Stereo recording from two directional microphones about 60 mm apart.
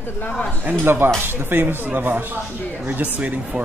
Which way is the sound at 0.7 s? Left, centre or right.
Right.